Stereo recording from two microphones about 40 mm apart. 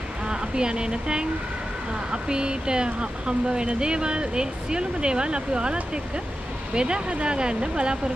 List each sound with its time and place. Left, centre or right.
0.3 s speech: right
2.2 s speech: right